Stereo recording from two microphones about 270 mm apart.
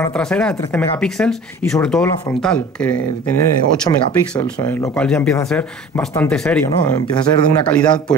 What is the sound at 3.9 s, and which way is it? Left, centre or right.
Speech, centre.